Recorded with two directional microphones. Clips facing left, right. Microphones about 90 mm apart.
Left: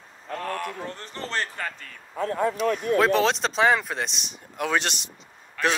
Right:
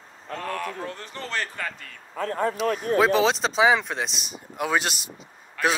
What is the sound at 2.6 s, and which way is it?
Speech, 40° right (ahead or behind).